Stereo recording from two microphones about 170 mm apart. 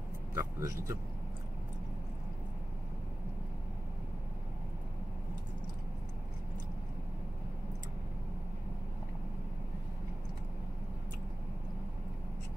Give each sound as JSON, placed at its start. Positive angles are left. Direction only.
{"t": 0.3, "sound": "speech", "side_deg": -20}